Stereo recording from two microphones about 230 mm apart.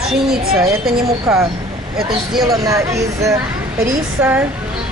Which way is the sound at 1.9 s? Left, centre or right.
Centre.